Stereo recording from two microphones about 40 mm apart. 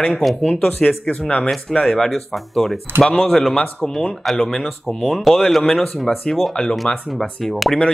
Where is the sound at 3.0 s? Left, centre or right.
Centre.